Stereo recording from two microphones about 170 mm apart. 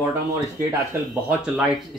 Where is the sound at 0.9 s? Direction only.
15° right (ahead or behind).